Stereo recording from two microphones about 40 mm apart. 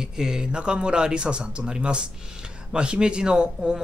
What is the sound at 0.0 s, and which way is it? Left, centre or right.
Speech, centre.